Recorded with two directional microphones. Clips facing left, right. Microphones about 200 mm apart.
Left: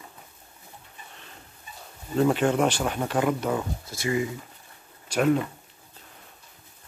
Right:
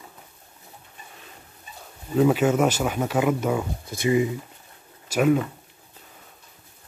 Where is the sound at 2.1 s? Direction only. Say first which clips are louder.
Right 3 dB; 5° right (ahead or behind).